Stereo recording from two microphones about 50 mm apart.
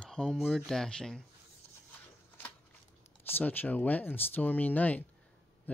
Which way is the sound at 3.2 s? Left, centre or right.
Left.